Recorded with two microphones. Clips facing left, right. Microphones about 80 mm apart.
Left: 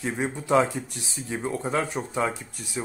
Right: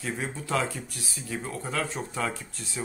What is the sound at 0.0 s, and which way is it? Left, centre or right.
Speech, left.